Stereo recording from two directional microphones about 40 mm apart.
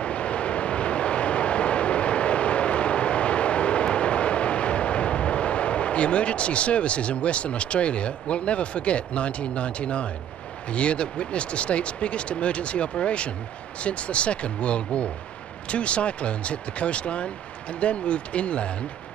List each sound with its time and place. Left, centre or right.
0.0 s vehicle: left
10.7 s speech: left